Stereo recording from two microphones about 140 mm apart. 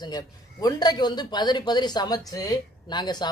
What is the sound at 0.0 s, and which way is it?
Speech, 30° left (ahead or behind).